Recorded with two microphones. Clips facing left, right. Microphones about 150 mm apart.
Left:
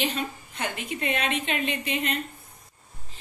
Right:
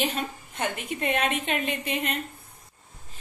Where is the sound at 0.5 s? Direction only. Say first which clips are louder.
Right 2 dB; 50° right (ahead or behind).